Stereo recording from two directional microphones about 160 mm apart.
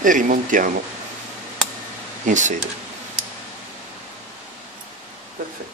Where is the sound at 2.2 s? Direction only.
50° right (ahead or behind).